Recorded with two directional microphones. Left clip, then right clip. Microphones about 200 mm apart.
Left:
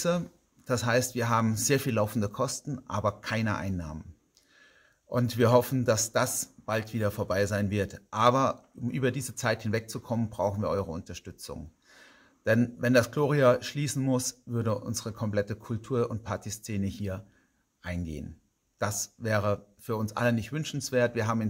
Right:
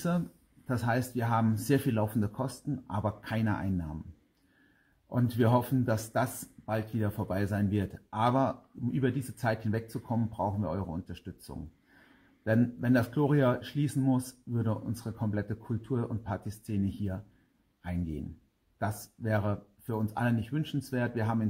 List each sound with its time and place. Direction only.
0.7 s speech: 15° left (ahead or behind)
5.1 s speech: 15° left (ahead or behind)
18.8 s speech: 15° left (ahead or behind)